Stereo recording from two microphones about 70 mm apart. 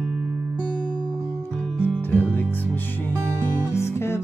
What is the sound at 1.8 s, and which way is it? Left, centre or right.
Music, left.